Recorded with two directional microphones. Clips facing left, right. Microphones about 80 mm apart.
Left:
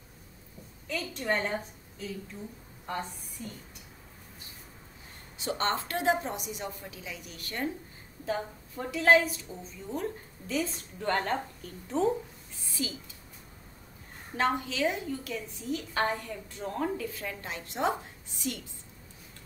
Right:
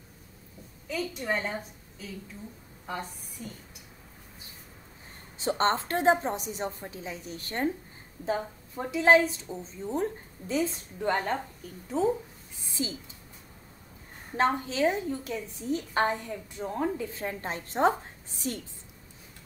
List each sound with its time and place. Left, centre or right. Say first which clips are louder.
0.8 s a woman's voice: right 1 dB; centre
5.4 s a woman's voice: right 4 dB; right
8.3 s a woman's voice: right 2 dB; right
11.3 s a woman's voice: even; centre
12.8 s a woman's voice: right 2 dB; right
14.3 s a woman's voice: right 2 dB; right; by 16.9 s centre
16.9 s a woman's voice: right 2 dB; right